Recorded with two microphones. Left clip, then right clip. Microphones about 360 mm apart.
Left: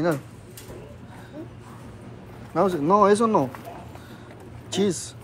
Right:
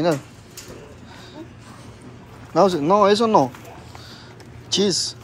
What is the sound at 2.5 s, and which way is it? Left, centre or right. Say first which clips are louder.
Speech: right 4 dB; centre.